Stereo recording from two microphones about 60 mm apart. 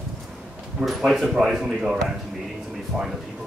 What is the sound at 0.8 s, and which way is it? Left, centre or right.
Speech, centre.